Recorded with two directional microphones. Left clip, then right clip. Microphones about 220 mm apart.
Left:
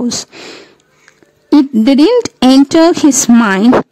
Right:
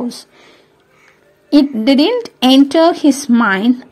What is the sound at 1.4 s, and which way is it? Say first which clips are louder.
Speech: left 2 dB; 35° left (ahead or behind).